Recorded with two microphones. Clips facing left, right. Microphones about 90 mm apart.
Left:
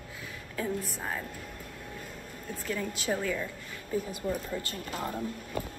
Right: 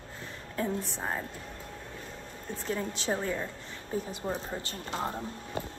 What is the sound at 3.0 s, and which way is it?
A woman's voice, 30° right (ahead or behind).